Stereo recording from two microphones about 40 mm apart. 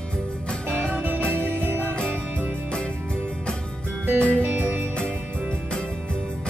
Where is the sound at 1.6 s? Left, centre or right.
Right.